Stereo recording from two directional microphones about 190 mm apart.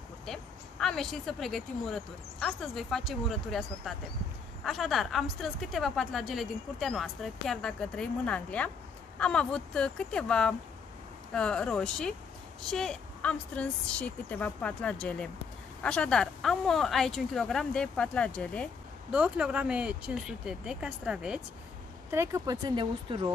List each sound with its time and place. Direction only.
0.3 s speech: centre (ahead or behind)
19.1 s speech: 5° right (ahead or behind)
22.1 s speech: 15° right (ahead or behind)